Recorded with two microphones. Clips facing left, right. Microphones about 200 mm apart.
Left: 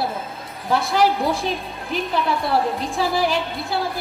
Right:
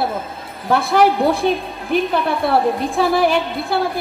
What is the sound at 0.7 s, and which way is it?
A woman's voice, 60° right (ahead or behind).